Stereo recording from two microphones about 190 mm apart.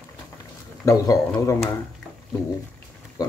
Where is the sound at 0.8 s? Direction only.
15° left (ahead or behind).